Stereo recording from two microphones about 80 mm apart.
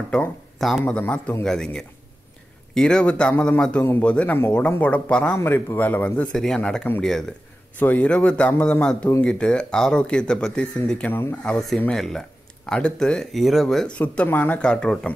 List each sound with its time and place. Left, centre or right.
0.6 s a man's voice: centre
0.8 s speech: centre
5.4 s speech: left
6.3 s speech: centre
7.8 s speech: centre
11.1 s speech: left
11.4 s speech: centre
13.9 s speech: centre
14.7 s speech: centre